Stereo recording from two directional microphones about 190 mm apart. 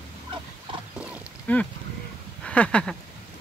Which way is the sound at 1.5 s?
10° left (ahead or behind).